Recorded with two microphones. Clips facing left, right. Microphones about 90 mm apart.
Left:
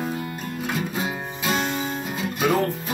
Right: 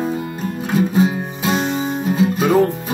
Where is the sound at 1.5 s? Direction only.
20° right (ahead or behind).